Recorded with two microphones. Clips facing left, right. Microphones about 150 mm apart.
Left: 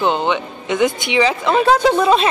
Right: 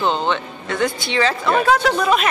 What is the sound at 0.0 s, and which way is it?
A woman's voice, 15° left (ahead or behind).